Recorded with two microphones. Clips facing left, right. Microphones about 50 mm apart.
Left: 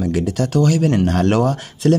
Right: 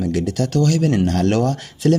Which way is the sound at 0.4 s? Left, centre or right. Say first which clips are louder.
Left 2 dB; centre.